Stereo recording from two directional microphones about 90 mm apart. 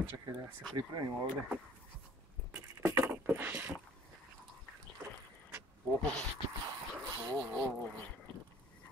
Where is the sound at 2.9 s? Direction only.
30° right (ahead or behind).